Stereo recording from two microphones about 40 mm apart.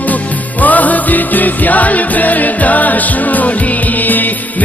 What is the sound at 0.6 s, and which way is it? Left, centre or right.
Music, left.